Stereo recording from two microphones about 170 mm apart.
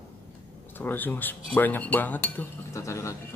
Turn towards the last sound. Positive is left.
turn(degrees=15)  # may be behind; listen again after turning